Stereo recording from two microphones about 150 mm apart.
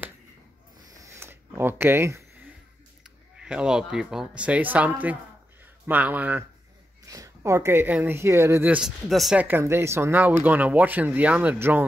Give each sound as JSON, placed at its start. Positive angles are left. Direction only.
{"t": 0.8, "sound": "a sound", "side_deg": -20}
{"t": 3.0, "sound": "speech", "side_deg": -5}
{"t": 7.1, "sound": "speech", "side_deg": -20}